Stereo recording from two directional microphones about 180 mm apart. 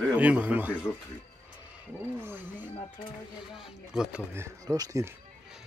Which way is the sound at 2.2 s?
10° right (ahead or behind).